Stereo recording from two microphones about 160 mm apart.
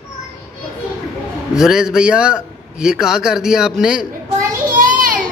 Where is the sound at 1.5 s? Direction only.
5° right (ahead or behind).